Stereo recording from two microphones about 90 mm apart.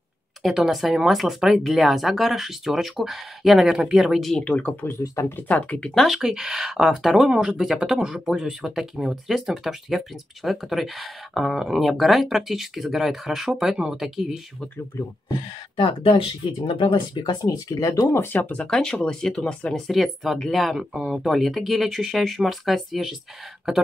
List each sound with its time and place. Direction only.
0.4 s speech: 5° right (ahead or behind)
4.5 s speech: 15° left (ahead or behind)
4.8 s speech: 35° left (ahead or behind)
5.3 s speech: 15° left (ahead or behind)
6.0 s speech: 5° right (ahead or behind)
15.7 s speech: 80° left; by 18.6 s 20° left (ahead or behind)
18.6 s speech: 5° left (ahead or behind)